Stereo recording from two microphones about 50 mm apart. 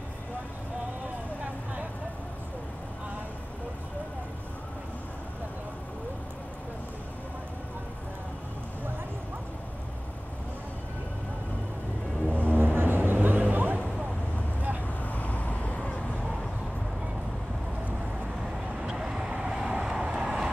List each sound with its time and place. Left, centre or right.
12.3 s a sound: right
15.0 s vehicle: left
18.8 s vehicle: centre